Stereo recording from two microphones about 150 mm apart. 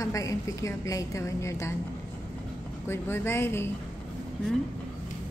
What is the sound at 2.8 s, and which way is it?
Speech, 15° left (ahead or behind).